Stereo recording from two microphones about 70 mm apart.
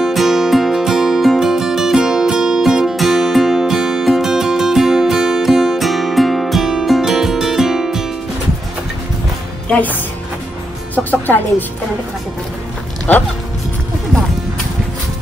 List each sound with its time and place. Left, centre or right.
0.0 s music: centre
9.7 s a woman's voice: left
11.1 s speech: left
13.1 s speech: centre